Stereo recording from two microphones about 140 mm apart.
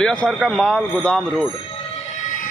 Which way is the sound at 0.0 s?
5° left (ahead or behind).